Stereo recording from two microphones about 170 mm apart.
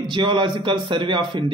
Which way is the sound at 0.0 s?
25° right (ahead or behind).